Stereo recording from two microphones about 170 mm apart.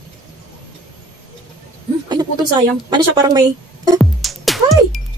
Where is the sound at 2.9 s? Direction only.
25° right (ahead or behind).